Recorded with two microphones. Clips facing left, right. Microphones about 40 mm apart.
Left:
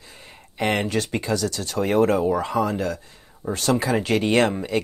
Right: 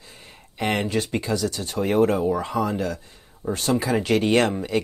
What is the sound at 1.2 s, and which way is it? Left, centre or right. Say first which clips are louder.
Speech: left 1 dB; left.